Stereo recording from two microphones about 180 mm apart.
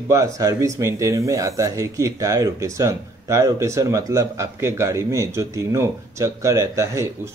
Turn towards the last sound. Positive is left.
turn(degrees=-15)  # may be behind; listen again after turning